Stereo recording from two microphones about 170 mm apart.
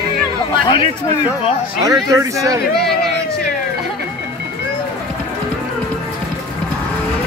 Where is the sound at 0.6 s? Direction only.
30° left (ahead or behind).